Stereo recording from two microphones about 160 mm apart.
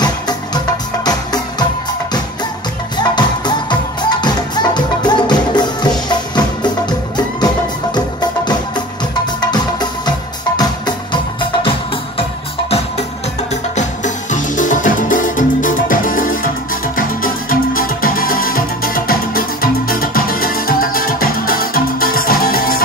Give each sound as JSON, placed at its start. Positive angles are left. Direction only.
{"t": 1.0, "sound": "music", "side_deg": 25}
{"t": 3.0, "sound": "music", "side_deg": 25}
{"t": 12.2, "sound": "music", "side_deg": 40}
{"t": 13.7, "sound": "music", "side_deg": 50}